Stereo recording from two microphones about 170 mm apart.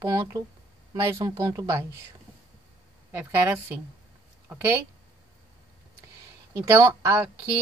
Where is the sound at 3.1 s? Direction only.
10° right (ahead or behind).